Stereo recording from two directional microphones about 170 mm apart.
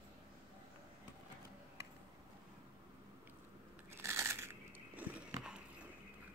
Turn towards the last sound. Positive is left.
turn(degrees=-5)  # may be behind; listen again after turning